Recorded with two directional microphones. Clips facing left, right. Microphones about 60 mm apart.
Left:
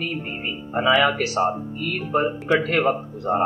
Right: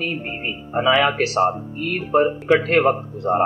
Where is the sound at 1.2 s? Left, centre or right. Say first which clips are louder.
Right 3 dB; right.